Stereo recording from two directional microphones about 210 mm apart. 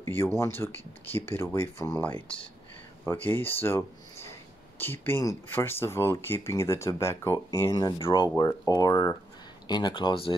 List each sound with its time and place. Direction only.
0.0 s speech: 10° left (ahead or behind)